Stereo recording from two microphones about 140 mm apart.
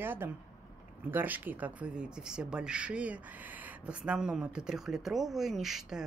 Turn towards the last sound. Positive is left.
turn(degrees=-5)  # may be behind; listen again after turning